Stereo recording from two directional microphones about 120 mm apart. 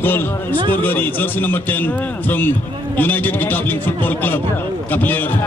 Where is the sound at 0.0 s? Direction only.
15° left (ahead or behind).